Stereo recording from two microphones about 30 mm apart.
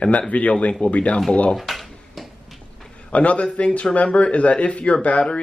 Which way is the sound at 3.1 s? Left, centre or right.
Left.